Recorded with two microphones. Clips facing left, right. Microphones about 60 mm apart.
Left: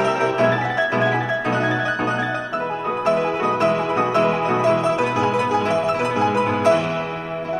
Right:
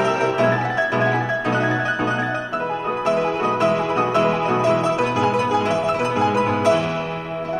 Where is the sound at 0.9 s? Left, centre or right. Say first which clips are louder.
Even; centre.